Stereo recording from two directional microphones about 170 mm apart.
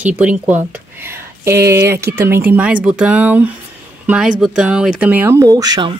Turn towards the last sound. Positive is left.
turn(degrees=-25)  # may be behind; listen again after turning